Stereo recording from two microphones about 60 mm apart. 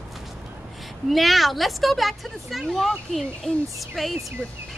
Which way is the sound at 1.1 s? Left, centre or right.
Centre.